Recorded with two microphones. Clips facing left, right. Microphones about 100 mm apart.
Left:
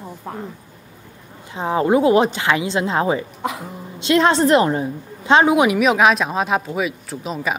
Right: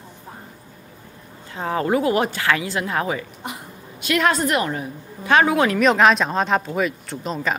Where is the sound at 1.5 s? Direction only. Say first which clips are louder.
Left 4 dB; 20° left (ahead or behind).